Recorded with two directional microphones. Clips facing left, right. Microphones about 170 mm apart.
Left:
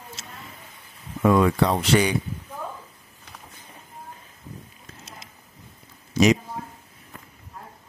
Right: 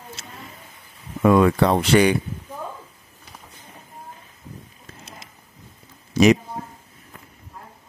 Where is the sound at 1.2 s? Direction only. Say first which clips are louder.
Right 3 dB; 60° right (ahead or behind).